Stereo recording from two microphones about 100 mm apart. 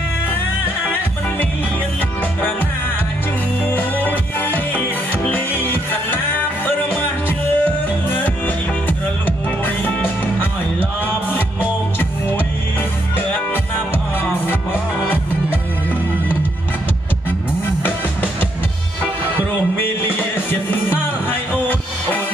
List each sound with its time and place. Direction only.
3.6 s music: 20° left (ahead or behind)
9.8 s music: 20° left (ahead or behind)
20.7 s music: 20° left (ahead or behind)